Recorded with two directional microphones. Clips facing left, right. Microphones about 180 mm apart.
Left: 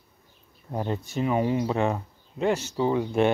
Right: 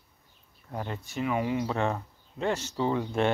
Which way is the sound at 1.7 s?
10° left (ahead or behind).